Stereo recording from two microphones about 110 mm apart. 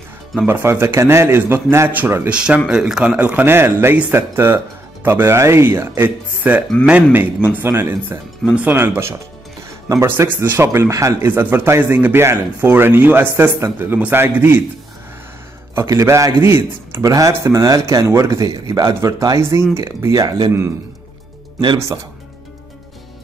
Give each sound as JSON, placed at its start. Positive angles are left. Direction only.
{"t": 0.5, "sound": "a man's voice", "side_deg": -20}
{"t": 15.7, "sound": "a man's voice", "side_deg": -25}